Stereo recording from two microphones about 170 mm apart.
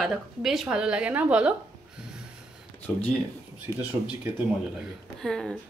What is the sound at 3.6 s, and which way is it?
Speech, 10° right (ahead or behind).